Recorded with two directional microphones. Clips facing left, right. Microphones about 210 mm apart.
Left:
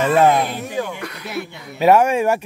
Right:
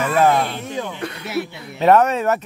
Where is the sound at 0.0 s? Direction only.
25° left (ahead or behind).